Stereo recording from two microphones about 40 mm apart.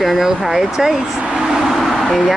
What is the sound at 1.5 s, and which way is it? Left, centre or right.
Vehicle, centre.